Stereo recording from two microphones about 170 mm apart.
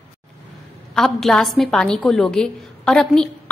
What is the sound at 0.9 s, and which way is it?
A woman's voice, 5° left (ahead or behind).